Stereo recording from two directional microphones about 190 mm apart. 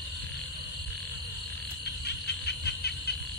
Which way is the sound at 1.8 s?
60° left (ahead or behind).